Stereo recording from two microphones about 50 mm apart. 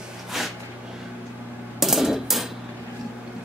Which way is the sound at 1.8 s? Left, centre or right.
Centre.